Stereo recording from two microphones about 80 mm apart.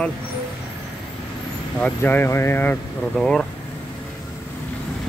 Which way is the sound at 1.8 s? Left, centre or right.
Left.